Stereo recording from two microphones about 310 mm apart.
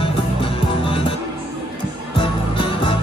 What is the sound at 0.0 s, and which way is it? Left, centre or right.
Music, centre.